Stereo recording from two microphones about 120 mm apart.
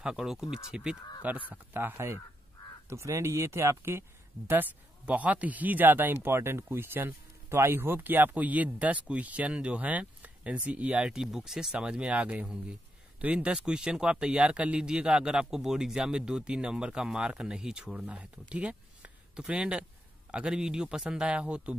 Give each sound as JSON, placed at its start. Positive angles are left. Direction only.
{"t": 0.0, "sound": "speech", "side_deg": -5}